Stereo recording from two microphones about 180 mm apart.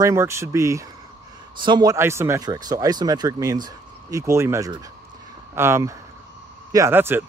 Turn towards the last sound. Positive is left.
turn(degrees=-15)  # may be behind; listen again after turning